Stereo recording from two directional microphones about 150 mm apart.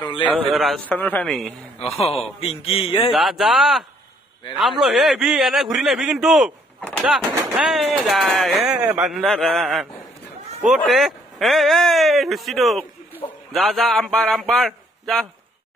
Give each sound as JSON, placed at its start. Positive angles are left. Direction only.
{"t": 0.5, "sound": "speech", "side_deg": 0}
{"t": 0.8, "sound": "a man's voice", "side_deg": 10}
{"t": 1.8, "sound": "a man's voice", "side_deg": 40}
{"t": 3.2, "sound": "speech", "side_deg": 0}